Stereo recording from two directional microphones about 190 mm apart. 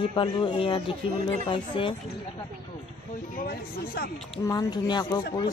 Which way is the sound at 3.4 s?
55° left (ahead or behind).